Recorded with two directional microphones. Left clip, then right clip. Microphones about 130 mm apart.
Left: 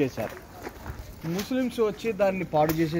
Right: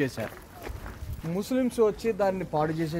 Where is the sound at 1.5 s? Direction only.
55° right (ahead or behind).